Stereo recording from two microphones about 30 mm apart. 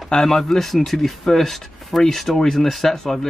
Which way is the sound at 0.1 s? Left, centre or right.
Centre.